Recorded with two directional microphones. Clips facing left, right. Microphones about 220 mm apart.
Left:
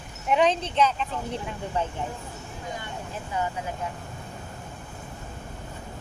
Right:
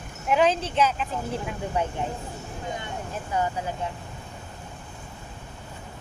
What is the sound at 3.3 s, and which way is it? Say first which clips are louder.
Speech: right 3 dB; 40° right (ahead or behind).